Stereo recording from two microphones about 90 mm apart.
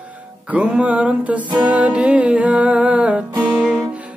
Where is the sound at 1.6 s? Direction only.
15° right (ahead or behind).